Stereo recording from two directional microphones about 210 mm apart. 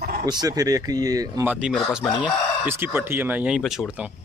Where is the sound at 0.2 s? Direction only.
20° right (ahead or behind).